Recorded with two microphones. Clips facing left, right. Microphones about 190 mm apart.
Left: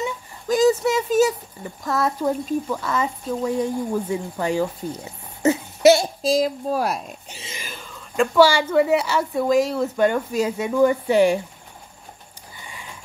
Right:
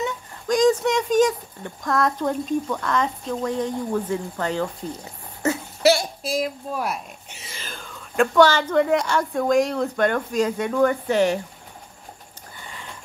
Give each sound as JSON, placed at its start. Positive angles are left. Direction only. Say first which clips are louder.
{"t": 0.0, "sound": "speech", "louder": "even", "side_deg": 5}
{"t": 7.5, "sound": "a woman's voice", "louder": "right 1 dB", "side_deg": 5}
{"t": 12.6, "sound": "a sound", "louder": "right 1 dB", "side_deg": 10}